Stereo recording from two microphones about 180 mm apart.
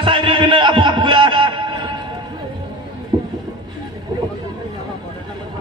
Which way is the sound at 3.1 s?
20° right (ahead or behind).